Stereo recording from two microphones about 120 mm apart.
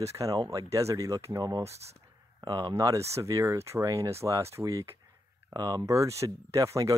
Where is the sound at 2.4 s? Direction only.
35° right (ahead or behind).